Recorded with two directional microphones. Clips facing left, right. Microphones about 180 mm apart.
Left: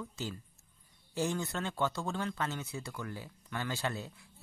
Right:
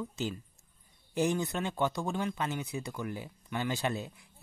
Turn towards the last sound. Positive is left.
turn(degrees=-15)  # may be behind; listen again after turning